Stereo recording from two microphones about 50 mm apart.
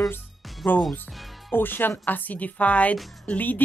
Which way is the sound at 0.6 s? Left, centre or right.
Left.